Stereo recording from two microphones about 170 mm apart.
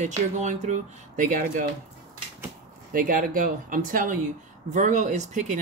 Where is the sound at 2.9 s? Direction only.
55° right (ahead or behind).